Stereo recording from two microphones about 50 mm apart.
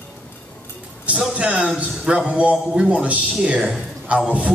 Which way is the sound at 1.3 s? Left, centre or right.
Right.